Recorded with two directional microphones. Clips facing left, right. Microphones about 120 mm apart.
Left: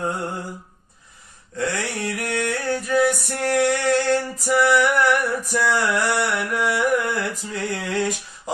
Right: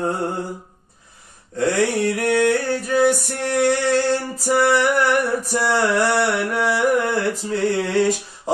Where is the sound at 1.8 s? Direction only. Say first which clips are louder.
Right 8 dB; 40° right (ahead or behind).